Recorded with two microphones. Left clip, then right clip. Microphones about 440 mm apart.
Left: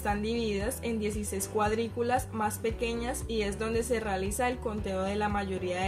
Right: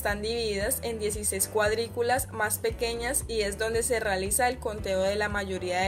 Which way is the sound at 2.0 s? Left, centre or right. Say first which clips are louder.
Right 2 dB; right.